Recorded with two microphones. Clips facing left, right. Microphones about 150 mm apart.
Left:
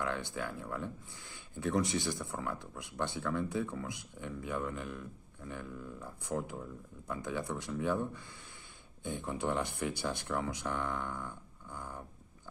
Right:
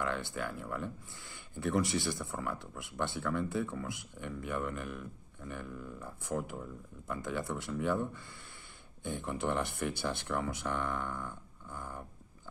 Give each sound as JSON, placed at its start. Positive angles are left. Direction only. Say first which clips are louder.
{"t": 0.0, "sound": "speech", "louder": "right 1 dB", "side_deg": 15}